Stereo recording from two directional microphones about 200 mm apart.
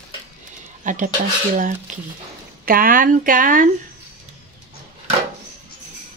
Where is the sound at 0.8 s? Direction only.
40° right (ahead or behind).